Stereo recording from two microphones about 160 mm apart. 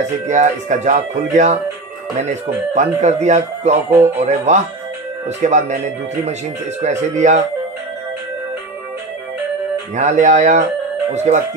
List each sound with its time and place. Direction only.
0.3 s speech: 50° right (ahead or behind)
3.9 s speech: 15° right (ahead or behind)
4.2 s speech: 45° right (ahead or behind)
6.8 s speech: 45° right (ahead or behind)
9.9 s speech: 50° right (ahead or behind)